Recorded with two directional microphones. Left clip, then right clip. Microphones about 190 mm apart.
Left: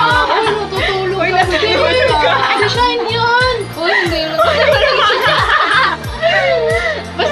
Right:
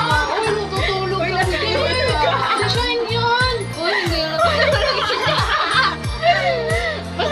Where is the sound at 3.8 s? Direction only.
Centre (ahead or behind).